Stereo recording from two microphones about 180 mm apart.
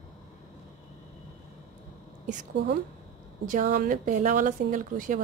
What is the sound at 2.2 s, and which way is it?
A woman's voice, 45° right (ahead or behind).